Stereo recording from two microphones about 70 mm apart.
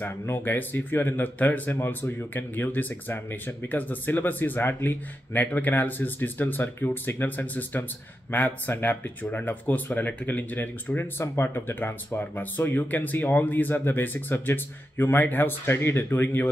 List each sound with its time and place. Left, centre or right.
0.0 s speech: left